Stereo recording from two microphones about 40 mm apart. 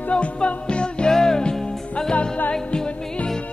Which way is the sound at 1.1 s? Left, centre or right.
Centre.